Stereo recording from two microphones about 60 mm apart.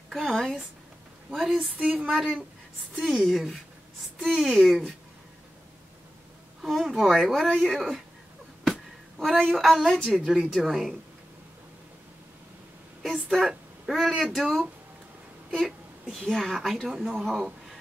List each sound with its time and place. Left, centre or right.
0.1 s a woman's voice: centre
1.8 s speech: right
3.0 s a woman's voice: centre
6.9 s a woman's voice: centre
9.2 s a woman's voice: centre
13.0 s a woman's voice: centre